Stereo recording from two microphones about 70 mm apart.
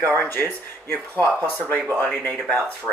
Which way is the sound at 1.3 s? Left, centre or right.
Centre.